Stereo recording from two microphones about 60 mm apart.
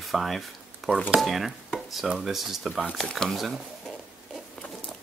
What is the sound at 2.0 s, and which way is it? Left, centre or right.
Speech, centre.